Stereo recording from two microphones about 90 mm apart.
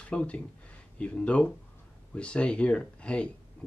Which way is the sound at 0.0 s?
15° left (ahead or behind).